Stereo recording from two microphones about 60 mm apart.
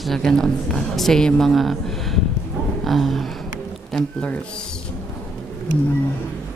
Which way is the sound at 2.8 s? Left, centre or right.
Centre.